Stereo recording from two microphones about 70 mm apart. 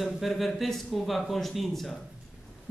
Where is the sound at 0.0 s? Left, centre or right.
Centre.